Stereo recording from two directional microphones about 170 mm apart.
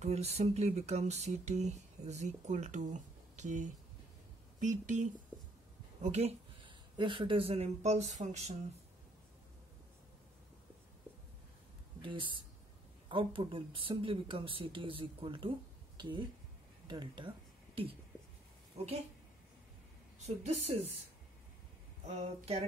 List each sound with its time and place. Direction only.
0.0 s speech: 40° right (ahead or behind)
6.0 s speech: 40° right (ahead or behind)
12.0 s speech: 30° right (ahead or behind)
18.8 s speech: 40° right (ahead or behind)
20.2 s speech: 40° right (ahead or behind)
22.0 s speech: 40° right (ahead or behind)